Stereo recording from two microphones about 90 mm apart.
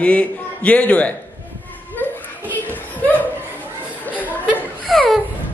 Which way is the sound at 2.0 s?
20° left (ahead or behind).